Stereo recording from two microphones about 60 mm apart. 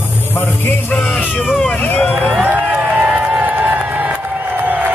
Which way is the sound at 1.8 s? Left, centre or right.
Left.